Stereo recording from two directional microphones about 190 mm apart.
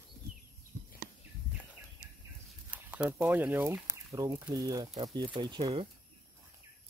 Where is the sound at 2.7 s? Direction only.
10° right (ahead or behind); by 5.9 s 30° right (ahead or behind).